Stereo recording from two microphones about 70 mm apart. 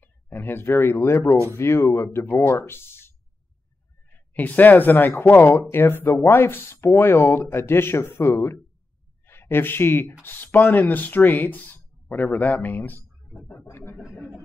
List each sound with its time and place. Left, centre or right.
0.0 s speech: left
4.1 s a man's voice: left
14.0 s a sound: centre